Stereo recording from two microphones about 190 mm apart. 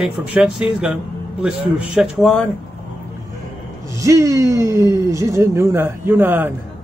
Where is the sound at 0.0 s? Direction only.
5° right (ahead or behind).